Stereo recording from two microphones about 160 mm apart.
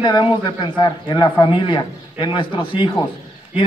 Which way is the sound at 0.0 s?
30° left (ahead or behind).